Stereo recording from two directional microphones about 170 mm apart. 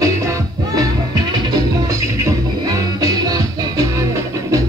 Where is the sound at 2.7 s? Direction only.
20° right (ahead or behind).